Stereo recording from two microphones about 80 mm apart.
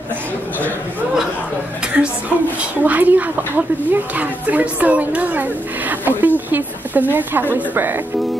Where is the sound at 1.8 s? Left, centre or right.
Centre.